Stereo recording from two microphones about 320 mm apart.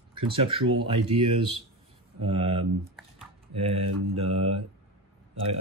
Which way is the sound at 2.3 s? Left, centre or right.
Centre.